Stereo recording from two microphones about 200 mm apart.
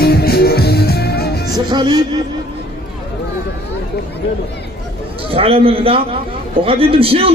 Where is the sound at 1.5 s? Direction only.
20° right (ahead or behind).